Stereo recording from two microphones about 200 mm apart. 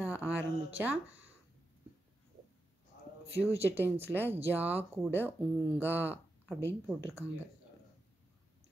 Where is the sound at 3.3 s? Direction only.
10° right (ahead or behind).